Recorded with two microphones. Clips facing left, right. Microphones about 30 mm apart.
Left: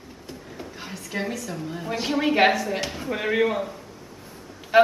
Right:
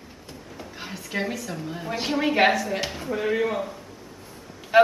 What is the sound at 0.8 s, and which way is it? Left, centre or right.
A woman's voice, centre.